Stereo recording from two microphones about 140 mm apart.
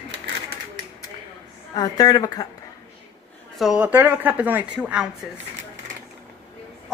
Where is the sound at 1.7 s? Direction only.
25° left (ahead or behind).